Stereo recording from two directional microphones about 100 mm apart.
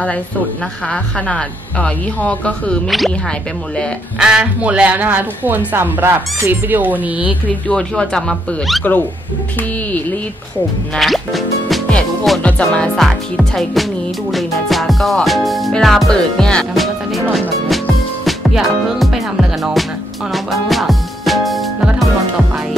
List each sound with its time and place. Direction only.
0.8 s a woman's voice: 10° left (ahead or behind)
4.2 s speech: 10° right (ahead or behind)
7.4 s a woman's voice: 15° left (ahead or behind)
7.9 s music: 10° left (ahead or behind)
11.0 s music: centre (ahead or behind)